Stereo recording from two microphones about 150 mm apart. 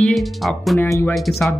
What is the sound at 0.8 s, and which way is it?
Speech, 15° left (ahead or behind).